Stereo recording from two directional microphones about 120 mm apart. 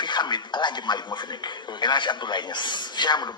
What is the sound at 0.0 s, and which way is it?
Speech, 40° left (ahead or behind).